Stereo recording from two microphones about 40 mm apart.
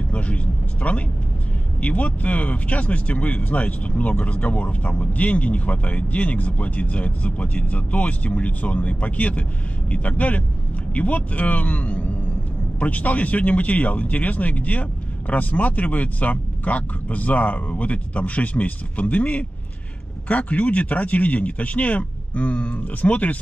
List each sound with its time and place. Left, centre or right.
0.8 s speech: left